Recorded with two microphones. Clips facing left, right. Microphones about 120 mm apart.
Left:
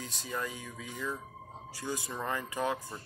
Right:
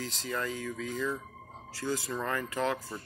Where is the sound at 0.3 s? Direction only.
15° left (ahead or behind).